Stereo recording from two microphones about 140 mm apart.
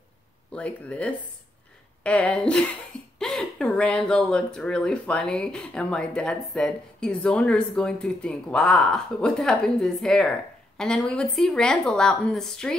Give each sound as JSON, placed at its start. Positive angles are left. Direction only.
{"t": 0.5, "sound": "speech", "side_deg": 10}